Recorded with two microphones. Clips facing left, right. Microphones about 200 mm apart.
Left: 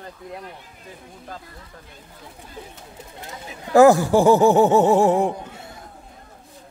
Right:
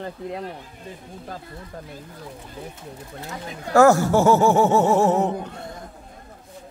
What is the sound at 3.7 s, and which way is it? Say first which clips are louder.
Speech: left 2 dB; 15° left (ahead or behind).